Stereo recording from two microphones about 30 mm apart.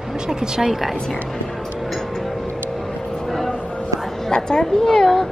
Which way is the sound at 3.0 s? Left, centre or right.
Centre.